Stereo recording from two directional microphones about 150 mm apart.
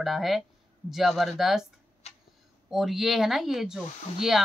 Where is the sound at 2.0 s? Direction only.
45° left (ahead or behind).